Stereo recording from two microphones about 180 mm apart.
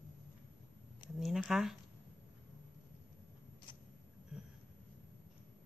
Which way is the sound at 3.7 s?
30° left (ahead or behind).